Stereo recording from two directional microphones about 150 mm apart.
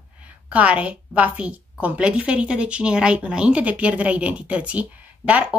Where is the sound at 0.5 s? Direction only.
10° right (ahead or behind).